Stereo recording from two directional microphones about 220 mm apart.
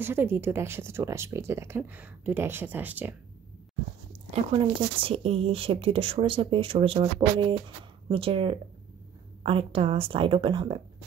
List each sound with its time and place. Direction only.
0.0 s speech: 10° right (ahead or behind)
4.3 s speech: 25° right (ahead or behind)